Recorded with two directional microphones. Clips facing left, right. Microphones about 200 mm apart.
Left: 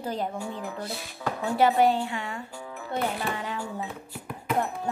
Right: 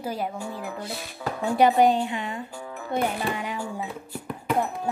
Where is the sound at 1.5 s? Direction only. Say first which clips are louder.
Right 3 dB; 15° right (ahead or behind).